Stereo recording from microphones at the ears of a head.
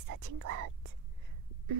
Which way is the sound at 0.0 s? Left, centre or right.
Right.